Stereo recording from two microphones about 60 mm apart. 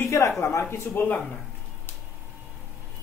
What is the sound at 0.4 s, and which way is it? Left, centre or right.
Speech, left.